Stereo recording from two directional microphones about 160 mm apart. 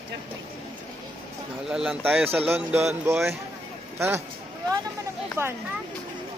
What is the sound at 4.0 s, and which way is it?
Speech, 15° right (ahead or behind).